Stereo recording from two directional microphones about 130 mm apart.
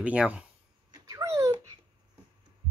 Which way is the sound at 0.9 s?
25° right (ahead or behind).